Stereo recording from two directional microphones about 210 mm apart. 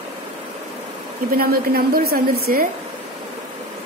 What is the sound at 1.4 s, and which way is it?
A woman's voice, 45° right (ahead or behind).